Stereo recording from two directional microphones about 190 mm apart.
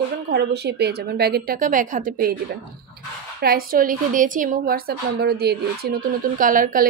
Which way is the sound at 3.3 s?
50° right (ahead or behind).